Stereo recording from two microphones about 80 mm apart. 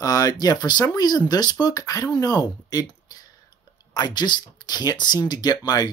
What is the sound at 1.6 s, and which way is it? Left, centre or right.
Speech, left.